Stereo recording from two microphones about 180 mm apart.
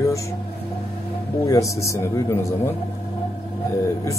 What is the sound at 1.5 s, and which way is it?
Speech, 15° left (ahead or behind).